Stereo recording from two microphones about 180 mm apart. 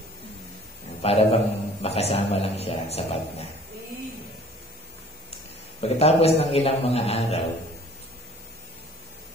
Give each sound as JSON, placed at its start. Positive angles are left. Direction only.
{"t": 1.0, "sound": "a man's voice", "side_deg": 35}
{"t": 5.8, "sound": "a man's voice", "side_deg": 35}